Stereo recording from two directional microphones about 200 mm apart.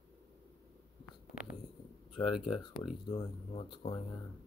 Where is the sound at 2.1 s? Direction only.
25° left (ahead or behind).